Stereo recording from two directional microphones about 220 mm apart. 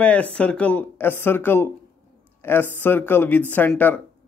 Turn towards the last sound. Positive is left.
turn(degrees=10)  # may be behind; listen again after turning